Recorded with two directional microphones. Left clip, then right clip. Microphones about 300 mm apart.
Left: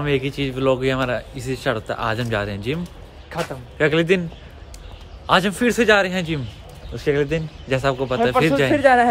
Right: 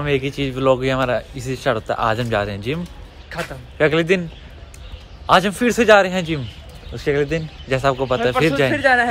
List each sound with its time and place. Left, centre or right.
0.0 s speech: centre
3.3 s speech: left
3.7 s speech: centre
8.7 s speech: left